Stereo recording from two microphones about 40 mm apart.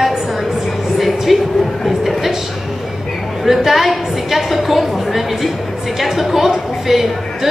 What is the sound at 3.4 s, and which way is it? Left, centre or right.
A woman's voice, centre.